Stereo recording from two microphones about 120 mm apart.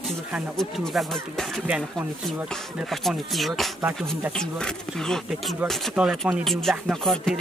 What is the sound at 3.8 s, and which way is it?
Speech, 15° right (ahead or behind).